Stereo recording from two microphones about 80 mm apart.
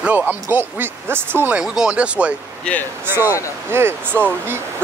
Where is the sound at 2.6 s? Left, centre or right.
Left.